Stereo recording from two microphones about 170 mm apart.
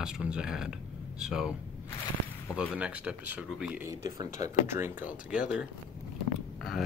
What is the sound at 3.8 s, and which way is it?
Speech, 20° right (ahead or behind).